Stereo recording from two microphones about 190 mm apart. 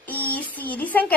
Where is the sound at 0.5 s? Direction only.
10° left (ahead or behind).